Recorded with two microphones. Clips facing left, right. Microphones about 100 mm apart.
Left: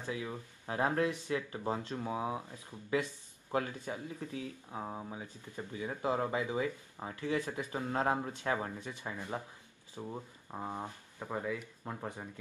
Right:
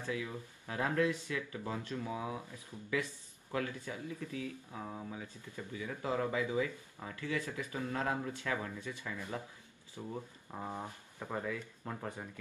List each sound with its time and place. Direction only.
0.0 s speech: 25° left (ahead or behind)